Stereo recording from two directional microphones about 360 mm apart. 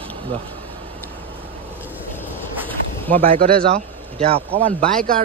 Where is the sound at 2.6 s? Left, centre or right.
Centre.